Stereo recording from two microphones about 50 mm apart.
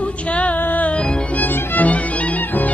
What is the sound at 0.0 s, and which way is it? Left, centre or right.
Music, left.